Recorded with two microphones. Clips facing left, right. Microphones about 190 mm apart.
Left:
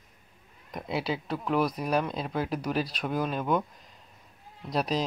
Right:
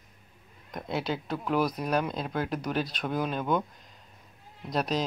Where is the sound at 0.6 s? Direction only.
5° left (ahead or behind).